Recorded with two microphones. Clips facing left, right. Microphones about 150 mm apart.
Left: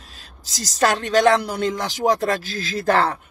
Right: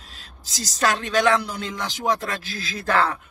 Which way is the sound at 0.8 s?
40° left (ahead or behind).